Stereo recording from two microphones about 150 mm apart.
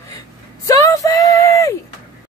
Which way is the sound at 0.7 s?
20° left (ahead or behind).